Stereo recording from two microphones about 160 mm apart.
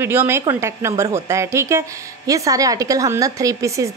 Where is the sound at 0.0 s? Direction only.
15° right (ahead or behind).